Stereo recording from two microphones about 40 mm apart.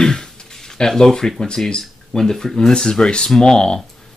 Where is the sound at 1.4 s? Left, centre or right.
Centre.